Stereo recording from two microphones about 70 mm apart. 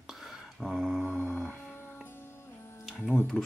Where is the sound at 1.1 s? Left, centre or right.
Left.